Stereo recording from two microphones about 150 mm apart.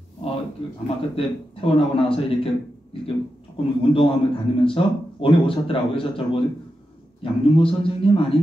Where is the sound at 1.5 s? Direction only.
40° left (ahead or behind).